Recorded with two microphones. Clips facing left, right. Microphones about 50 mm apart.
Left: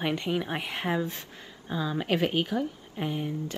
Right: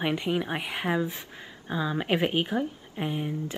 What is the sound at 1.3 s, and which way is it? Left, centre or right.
A woman's voice, centre.